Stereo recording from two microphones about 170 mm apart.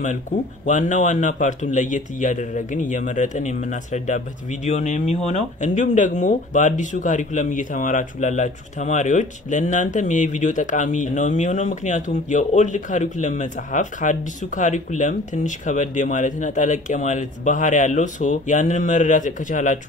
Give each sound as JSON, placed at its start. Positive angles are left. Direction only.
{"t": 0.7, "sound": "a man's voice", "side_deg": 45}